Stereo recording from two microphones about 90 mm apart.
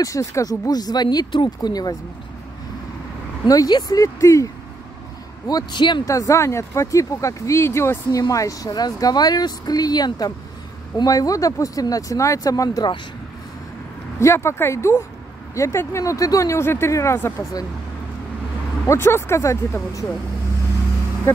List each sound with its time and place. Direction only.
0.0 s speech: 40° left (ahead or behind)
3.4 s speech: 45° left (ahead or behind)
5.5 s speech: 50° left (ahead or behind)
6.0 s speech: 40° left (ahead or behind)
8.1 s speech: 40° left (ahead or behind)
14.2 s speech: 30° left (ahead or behind)
18.9 s speech: 30° left (ahead or behind)